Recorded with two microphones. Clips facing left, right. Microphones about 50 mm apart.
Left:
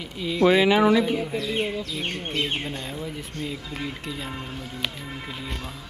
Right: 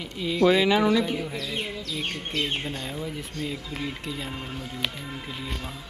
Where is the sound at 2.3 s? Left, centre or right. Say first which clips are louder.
Even; centre.